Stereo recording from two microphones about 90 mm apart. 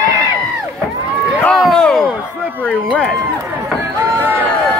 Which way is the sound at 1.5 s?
5° left (ahead or behind).